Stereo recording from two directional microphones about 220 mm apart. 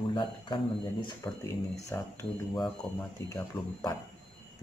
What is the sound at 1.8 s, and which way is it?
Speech, 15° left (ahead or behind).